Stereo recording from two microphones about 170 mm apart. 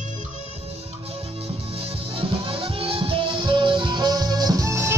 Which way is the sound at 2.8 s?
30° right (ahead or behind).